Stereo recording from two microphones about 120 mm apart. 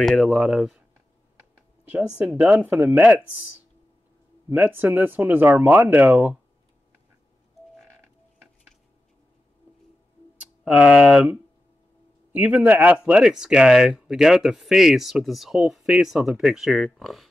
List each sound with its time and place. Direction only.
0.0 s speech: 5° left (ahead or behind)
1.9 s speech: 10° right (ahead or behind)
4.5 s speech: 15° right (ahead or behind)
10.3 s speech: 10° right (ahead or behind)